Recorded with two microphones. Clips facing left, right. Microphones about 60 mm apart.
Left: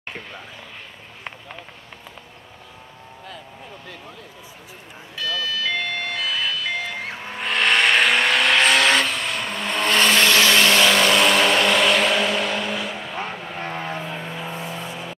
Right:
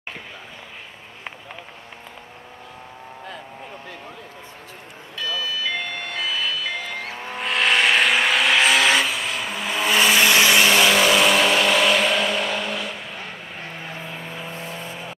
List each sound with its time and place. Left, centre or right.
5.2 s vehicle: centre
14.5 s vehicle: centre